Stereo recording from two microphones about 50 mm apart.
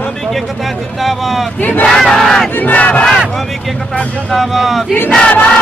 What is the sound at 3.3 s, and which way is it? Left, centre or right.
Speech, centre.